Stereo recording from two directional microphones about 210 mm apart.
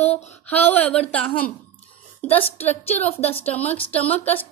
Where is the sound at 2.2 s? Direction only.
30° left (ahead or behind).